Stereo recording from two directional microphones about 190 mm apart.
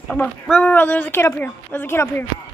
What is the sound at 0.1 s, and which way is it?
A woman's voice, 5° left (ahead or behind).